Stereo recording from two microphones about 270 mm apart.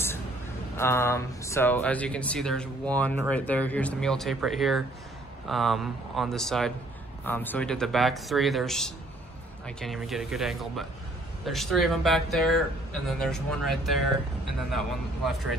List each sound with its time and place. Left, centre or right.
0.7 s speech: centre
15.2 s speech: centre